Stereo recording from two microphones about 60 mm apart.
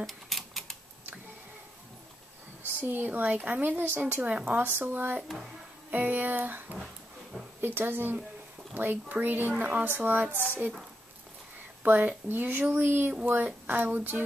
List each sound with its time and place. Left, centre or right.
0.0 s typewriter: centre
2.8 s a woman's voice: right
11.8 s speech: right